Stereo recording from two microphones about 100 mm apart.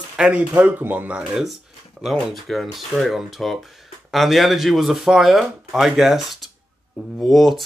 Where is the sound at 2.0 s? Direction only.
Centre (ahead or behind).